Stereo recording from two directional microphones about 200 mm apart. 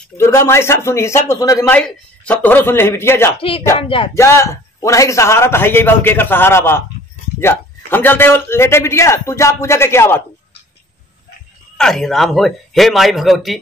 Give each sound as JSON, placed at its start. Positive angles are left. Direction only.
{"t": 0.2, "sound": "a man's voice", "side_deg": 15}
{"t": 3.3, "sound": "a sound", "side_deg": 25}
{"t": 4.1, "sound": "a man's voice", "side_deg": 15}
{"t": 11.7, "sound": "speech", "side_deg": 0}